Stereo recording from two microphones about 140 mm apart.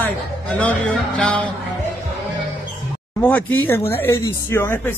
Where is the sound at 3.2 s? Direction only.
10° left (ahead or behind).